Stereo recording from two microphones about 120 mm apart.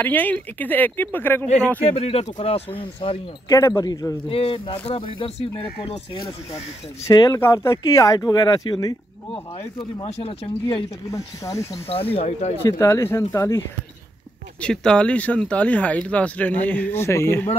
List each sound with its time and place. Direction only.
0.0 s speech: 15° left (ahead or behind)
1.9 s speech: 60° left (ahead or behind)
3.4 s speech: 30° left (ahead or behind)
4.3 s speech: 50° left (ahead or behind)
7.1 s speech: 35° left (ahead or behind)
10.0 s speech: 55° left (ahead or behind)
11.1 s speech: 25° left (ahead or behind)
11.9 s speech: 50° left (ahead or behind)
12.6 s speech: 25° left (ahead or behind)
14.6 s speech: 5° left (ahead or behind)